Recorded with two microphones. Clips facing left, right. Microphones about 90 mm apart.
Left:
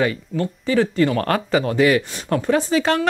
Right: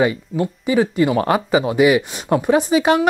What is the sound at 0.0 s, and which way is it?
Speech, 15° right (ahead or behind).